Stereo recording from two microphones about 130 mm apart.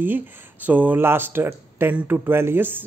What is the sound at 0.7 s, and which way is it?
Speech, 10° right (ahead or behind).